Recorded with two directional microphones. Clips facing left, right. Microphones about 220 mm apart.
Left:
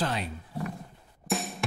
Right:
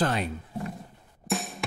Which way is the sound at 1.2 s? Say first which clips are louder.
Even; centre (ahead or behind).